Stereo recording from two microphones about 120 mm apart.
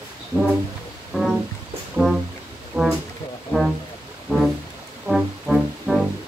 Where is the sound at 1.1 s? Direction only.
Centre (ahead or behind).